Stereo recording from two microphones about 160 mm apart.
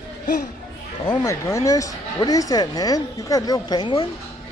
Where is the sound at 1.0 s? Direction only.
15° left (ahead or behind).